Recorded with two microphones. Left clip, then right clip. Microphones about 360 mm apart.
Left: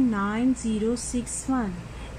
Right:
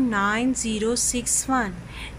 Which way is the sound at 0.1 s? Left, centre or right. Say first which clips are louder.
Right 4 dB; right.